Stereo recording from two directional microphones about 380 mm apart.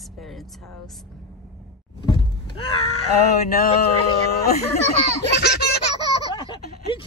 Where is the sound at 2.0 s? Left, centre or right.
Centre.